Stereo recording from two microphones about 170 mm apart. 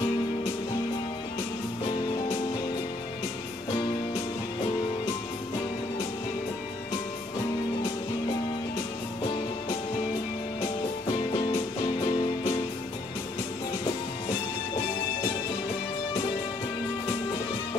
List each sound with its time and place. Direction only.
12.1 s music: 25° left (ahead or behind)